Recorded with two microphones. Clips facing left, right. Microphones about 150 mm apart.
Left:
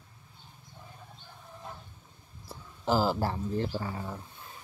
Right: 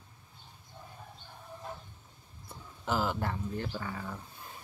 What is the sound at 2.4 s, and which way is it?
Speech, 35° left (ahead or behind).